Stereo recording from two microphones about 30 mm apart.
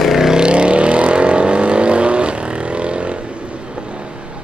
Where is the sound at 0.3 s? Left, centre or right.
Right.